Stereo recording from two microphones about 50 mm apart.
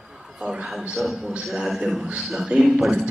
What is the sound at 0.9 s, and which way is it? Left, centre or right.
Speech, centre.